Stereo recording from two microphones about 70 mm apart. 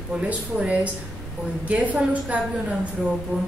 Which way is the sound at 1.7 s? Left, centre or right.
Centre.